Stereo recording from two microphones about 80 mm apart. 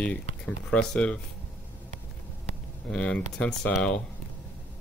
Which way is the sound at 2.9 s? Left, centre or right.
Centre.